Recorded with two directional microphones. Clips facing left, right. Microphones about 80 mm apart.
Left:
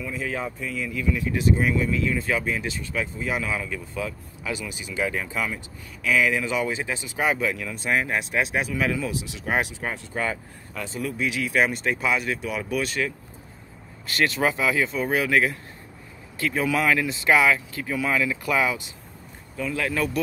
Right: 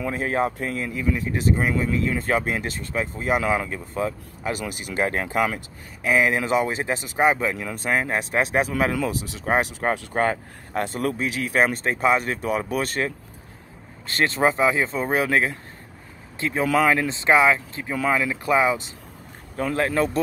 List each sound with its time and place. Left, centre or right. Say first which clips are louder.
0.0 s speech: right 6 dB; right
6.0 s speech: right 2 dB; right
7.7 s speech: right 1 dB; right
11.1 s speech: even; right
16.6 s speech: right 4 dB; right
19.5 s speech: right 4 dB; right